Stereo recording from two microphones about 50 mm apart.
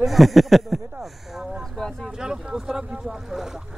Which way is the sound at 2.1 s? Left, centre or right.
Centre.